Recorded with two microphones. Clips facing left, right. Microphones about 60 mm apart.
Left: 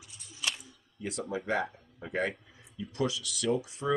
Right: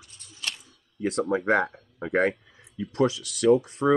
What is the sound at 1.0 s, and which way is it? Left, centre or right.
Speech, right.